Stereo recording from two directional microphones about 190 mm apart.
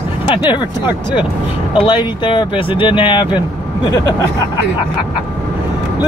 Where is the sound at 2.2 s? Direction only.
25° left (ahead or behind).